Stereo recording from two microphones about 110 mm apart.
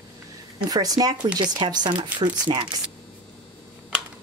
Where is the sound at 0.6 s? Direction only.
35° right (ahead or behind).